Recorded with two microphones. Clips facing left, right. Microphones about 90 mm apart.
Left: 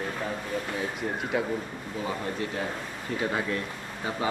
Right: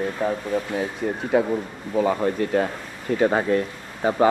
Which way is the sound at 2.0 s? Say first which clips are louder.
Right 11 dB; 65° right (ahead or behind).